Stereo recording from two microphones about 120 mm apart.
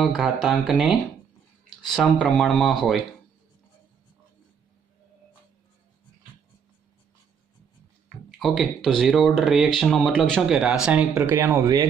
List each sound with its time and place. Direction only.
0.0 s speech: centre (ahead or behind)
2.1 s speech: 10° left (ahead or behind)
8.3 s speech: centre (ahead or behind)
10.5 s speech: 5° right (ahead or behind); by 11.8 s 25° right (ahead or behind)